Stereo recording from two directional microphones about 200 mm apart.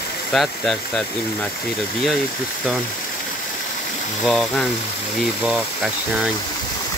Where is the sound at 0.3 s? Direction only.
Centre (ahead or behind).